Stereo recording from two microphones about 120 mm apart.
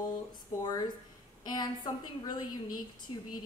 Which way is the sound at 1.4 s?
35° left (ahead or behind).